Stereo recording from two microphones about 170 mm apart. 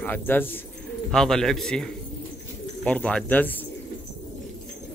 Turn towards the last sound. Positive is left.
turn(degrees=10)  # may be behind; listen again after turning